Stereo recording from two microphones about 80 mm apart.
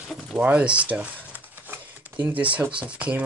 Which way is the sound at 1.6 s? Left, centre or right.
Right.